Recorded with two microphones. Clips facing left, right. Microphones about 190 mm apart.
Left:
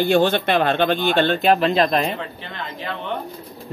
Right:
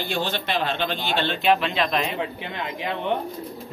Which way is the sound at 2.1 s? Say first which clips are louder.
Right 2 dB; 15° right (ahead or behind).